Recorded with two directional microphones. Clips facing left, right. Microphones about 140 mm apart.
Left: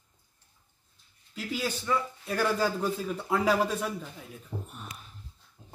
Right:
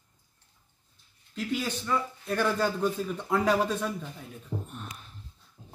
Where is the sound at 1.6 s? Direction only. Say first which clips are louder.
Left 1 dB; 5° left (ahead or behind).